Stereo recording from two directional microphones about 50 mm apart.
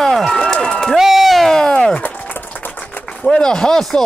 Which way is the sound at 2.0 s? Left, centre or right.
Left.